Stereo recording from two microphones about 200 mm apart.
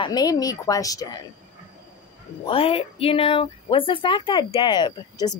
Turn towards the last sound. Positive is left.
turn(degrees=20)  # may be behind; listen again after turning